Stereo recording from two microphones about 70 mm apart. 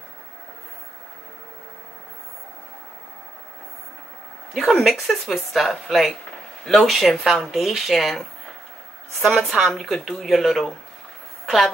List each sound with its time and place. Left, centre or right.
4.6 s speech: centre
9.2 s a woman's voice: centre